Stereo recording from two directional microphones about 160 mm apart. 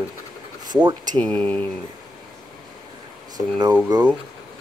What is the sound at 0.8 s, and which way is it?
Speech, 25° right (ahead or behind).